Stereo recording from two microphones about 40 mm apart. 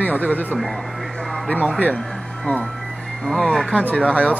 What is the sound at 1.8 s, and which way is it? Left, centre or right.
Speech, left.